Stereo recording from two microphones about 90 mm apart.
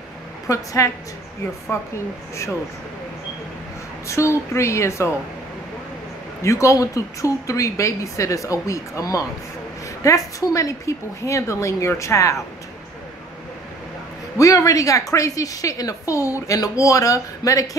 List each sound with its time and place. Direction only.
0.5 s a woman's voice: 35° left (ahead or behind)
4.1 s a woman's voice: 35° left (ahead or behind)
6.4 s a woman's voice: 35° left (ahead or behind)
14.4 s a woman's voice: 35° left (ahead or behind)